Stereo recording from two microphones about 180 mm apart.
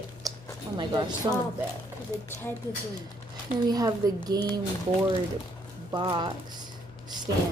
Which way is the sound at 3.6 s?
20° right (ahead or behind).